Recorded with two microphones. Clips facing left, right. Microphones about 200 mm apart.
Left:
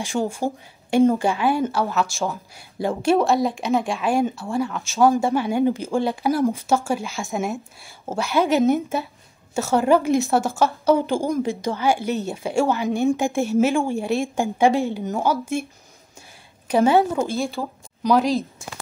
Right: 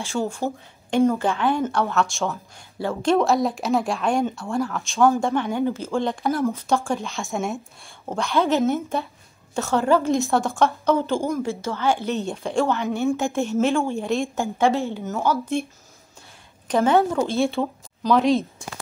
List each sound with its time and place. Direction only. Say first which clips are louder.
0.0 s a woman's voice: left 2 dB; 15° left (ahead or behind)
2.8 s a woman's voice: left 1 dB; 15° left (ahead or behind)
3.3 s a woman's voice: left 1 dB; centre (ahead or behind)
5.0 s a woman's voice: left 1 dB; 10° left (ahead or behind)
10.2 s a woman's voice: even; 5° left (ahead or behind)
17.4 s a woman's voice: right 4 dB; centre (ahead or behind)